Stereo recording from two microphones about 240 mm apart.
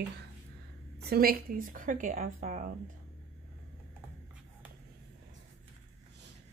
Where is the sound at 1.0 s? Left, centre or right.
Right.